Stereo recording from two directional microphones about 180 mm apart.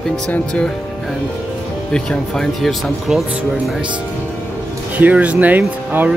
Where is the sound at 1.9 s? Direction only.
5° left (ahead or behind).